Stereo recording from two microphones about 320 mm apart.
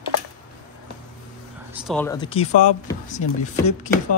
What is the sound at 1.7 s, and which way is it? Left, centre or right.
Speech, centre.